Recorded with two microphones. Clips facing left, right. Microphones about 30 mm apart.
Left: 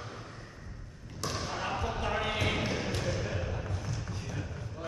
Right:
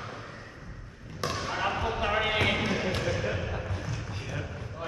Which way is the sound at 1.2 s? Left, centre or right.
Right.